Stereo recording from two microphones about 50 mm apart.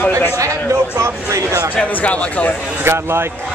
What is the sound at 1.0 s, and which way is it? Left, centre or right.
Speech, right.